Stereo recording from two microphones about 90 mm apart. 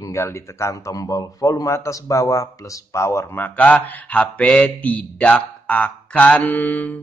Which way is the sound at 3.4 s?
15° left (ahead or behind).